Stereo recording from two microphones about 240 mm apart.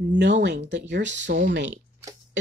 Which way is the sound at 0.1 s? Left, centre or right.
Right.